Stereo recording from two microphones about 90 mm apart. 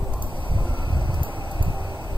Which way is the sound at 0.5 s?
65° right (ahead or behind).